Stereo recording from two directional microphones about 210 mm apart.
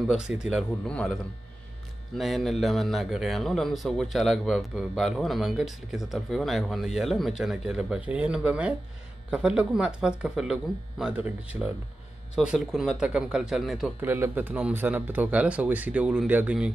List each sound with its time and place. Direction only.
0.1 s a man's voice: 5° right (ahead or behind)